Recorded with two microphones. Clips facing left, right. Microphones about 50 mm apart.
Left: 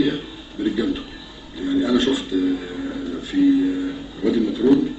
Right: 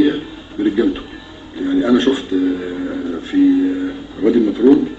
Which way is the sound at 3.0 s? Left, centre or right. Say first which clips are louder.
Right 4 dB; right.